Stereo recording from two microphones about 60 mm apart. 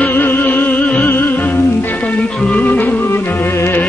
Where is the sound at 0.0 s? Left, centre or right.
Left.